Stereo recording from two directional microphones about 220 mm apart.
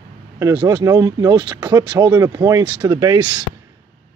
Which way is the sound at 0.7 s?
15° right (ahead or behind).